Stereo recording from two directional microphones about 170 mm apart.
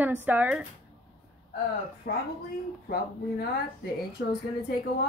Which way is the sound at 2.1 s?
55° left (ahead or behind).